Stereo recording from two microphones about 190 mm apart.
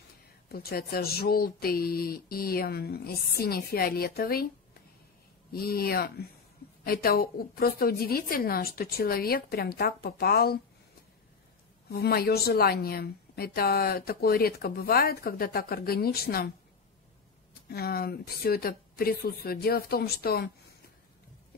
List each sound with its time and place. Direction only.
0.5 s a woman's voice: 55° left (ahead or behind)
5.5 s a woman's voice: 55° left (ahead or behind)
11.9 s a woman's voice: 55° left (ahead or behind)
17.6 s a woman's voice: 55° left (ahead or behind)